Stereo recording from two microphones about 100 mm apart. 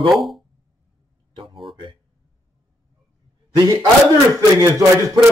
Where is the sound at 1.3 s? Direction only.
65° right (ahead or behind).